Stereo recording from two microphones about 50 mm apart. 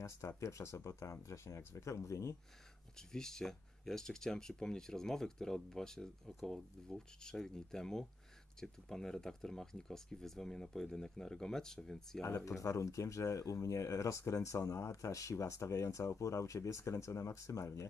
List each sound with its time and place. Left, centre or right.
0.4 s speech: left
3.1 s speech: centre
12.3 s speech: left